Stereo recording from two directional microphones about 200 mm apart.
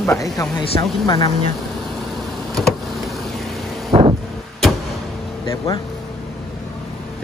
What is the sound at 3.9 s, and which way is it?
Wind noise, 30° right (ahead or behind).